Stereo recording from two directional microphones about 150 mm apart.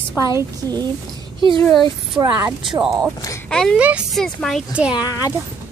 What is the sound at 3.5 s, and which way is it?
Speech, 5° left (ahead or behind).